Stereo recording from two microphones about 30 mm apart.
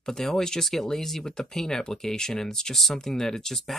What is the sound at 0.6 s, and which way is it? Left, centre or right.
Speech, centre.